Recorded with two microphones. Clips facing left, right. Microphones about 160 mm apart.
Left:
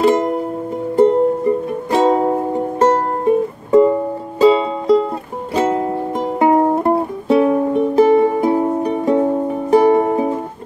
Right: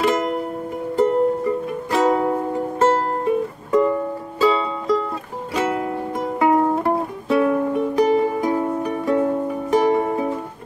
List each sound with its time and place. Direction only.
0.9 s music: 25° left (ahead or behind)